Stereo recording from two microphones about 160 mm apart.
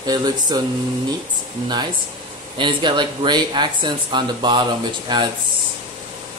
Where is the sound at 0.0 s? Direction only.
25° right (ahead or behind).